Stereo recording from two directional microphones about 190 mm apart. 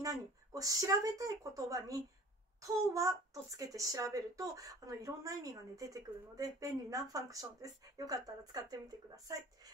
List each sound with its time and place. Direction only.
0.0 s speech: 15° right (ahead or behind)